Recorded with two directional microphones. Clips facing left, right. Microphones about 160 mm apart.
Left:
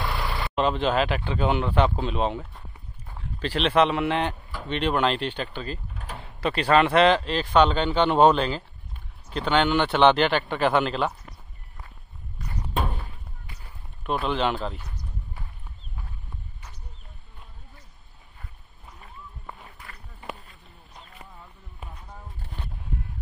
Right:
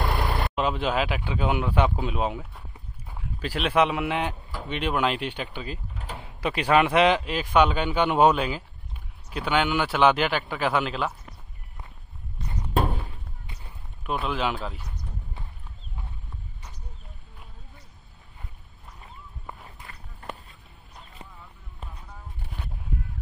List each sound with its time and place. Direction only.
0.0 s vehicle: 50° right (ahead or behind)
0.6 s speech: 10° right (ahead or behind)
13.5 s a sound: 20° right (ahead or behind)
14.0 s speech: 5° right (ahead or behind)